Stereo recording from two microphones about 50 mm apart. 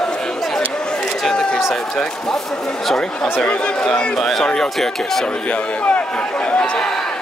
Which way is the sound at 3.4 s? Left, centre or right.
Centre.